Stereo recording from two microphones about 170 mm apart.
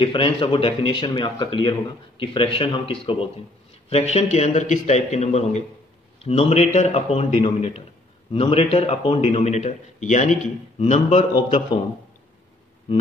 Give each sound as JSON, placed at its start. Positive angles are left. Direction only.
{"t": 0.0, "sound": "a man's voice", "side_deg": 30}